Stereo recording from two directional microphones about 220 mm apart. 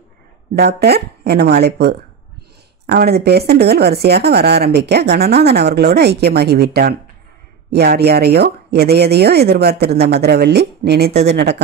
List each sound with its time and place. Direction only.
0.6 s speech: 45° right (ahead or behind)